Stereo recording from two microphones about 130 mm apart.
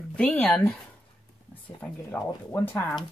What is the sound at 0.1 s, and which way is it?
Speech, 5° left (ahead or behind).